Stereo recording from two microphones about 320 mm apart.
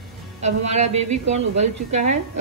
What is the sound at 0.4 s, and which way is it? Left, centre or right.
Speech, right.